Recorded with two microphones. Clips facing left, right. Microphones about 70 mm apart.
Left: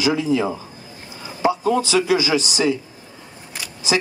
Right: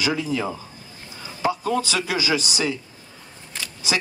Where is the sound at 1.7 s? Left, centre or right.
Left.